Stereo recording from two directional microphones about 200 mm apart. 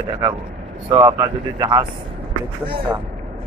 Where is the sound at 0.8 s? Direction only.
20° right (ahead or behind).